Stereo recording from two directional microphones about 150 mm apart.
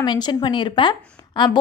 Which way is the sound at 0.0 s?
30° left (ahead or behind).